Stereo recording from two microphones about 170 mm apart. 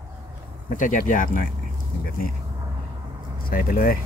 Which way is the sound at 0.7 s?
50° left (ahead or behind).